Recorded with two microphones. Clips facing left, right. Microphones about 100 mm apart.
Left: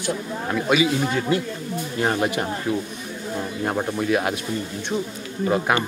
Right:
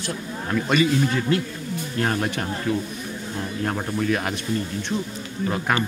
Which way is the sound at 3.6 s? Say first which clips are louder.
Left 1 dB; 10° left (ahead or behind).